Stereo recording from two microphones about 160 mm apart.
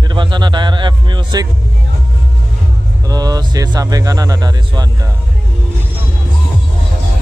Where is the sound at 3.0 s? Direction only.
25° right (ahead or behind).